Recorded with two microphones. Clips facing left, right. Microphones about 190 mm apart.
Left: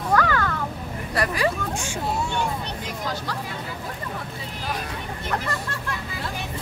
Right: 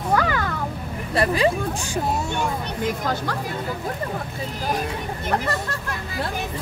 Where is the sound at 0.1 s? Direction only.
15° right (ahead or behind).